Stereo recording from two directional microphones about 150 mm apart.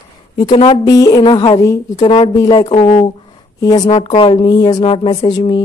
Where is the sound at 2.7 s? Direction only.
40° left (ahead or behind).